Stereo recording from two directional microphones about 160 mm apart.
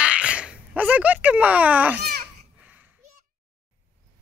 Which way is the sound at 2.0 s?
80° right.